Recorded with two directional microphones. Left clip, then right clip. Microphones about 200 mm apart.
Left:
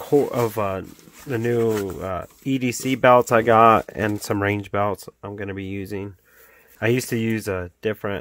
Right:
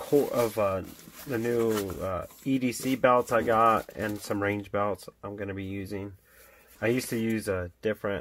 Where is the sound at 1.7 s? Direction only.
25° left (ahead or behind).